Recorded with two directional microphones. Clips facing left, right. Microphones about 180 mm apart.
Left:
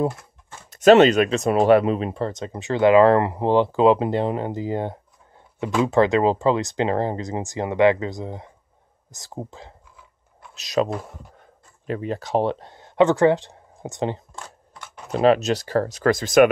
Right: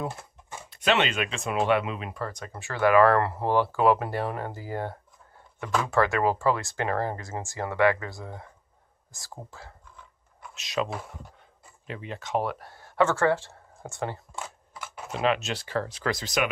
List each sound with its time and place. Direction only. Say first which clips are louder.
0.7 s speech: left 13 dB; 45° left (ahead or behind); by 9.8 s 20° left (ahead or behind)
10.5 s speech: left 7 dB; 40° left (ahead or behind); by 14.2 s 20° left (ahead or behind)
14.4 s a sound: right 1 dB; 5° right (ahead or behind)
15.0 s speech: left 9 dB; 40° left (ahead or behind)